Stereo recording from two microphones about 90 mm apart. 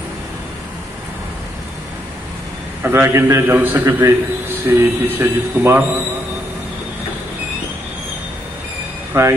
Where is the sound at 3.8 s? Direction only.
30° right (ahead or behind).